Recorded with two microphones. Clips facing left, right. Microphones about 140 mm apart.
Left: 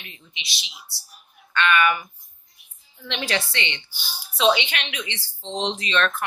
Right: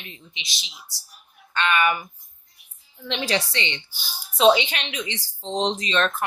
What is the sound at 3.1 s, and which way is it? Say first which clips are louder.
A woman's voice: right 2 dB; 30° right (ahead or behind).